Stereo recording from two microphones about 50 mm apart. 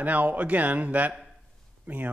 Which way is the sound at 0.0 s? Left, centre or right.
Right.